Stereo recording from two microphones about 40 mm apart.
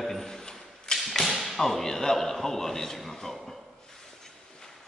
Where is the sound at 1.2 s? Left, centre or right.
Centre.